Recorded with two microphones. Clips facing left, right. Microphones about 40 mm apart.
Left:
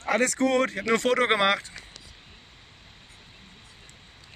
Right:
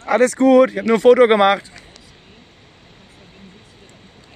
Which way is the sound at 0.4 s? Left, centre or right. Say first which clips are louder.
Right 12 dB; centre.